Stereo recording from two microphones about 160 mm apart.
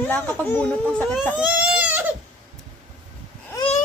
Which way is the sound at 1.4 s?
10° right (ahead or behind).